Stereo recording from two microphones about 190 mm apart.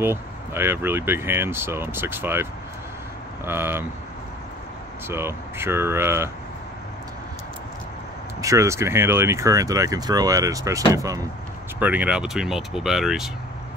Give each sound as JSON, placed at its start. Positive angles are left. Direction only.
{"t": 0.0, "sound": "speech", "side_deg": -10}
{"t": 3.4, "sound": "speech", "side_deg": -10}
{"t": 5.0, "sound": "speech", "side_deg": -10}
{"t": 8.4, "sound": "speech", "side_deg": -15}